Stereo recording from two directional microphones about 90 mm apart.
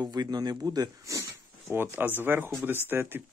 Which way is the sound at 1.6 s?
25° right (ahead or behind).